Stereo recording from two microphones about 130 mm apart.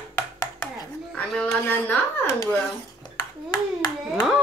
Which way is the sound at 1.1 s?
10° left (ahead or behind).